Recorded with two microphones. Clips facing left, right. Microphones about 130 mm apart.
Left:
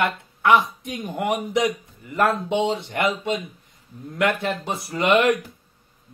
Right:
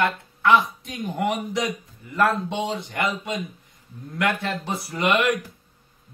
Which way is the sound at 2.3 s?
25° left (ahead or behind).